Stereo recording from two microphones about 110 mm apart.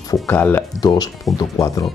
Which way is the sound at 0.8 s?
35° left (ahead or behind).